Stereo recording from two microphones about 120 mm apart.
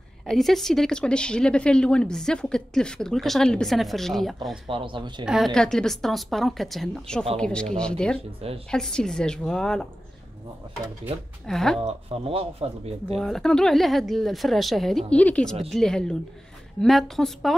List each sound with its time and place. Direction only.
0.3 s speech: centre (ahead or behind)
4.6 s speech: 45° right (ahead or behind)
5.2 s speech: 5° right (ahead or behind)
5.5 s speech: 5° left (ahead or behind)
11.4 s speech: 5° left (ahead or behind)
11.8 s speech: 55° right (ahead or behind)
13.2 s speech: 5° left (ahead or behind)